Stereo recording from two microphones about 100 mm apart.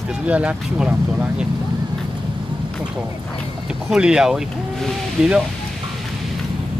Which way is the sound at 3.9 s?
5° right (ahead or behind).